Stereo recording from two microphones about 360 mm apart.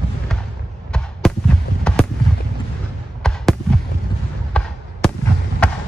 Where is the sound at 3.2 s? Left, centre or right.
Centre.